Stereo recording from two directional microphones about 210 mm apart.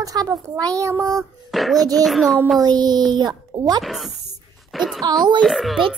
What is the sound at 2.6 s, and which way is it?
Speech, 20° right (ahead or behind).